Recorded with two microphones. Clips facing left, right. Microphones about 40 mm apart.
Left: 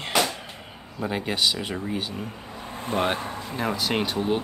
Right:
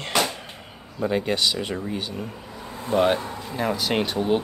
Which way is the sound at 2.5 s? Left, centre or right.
Left.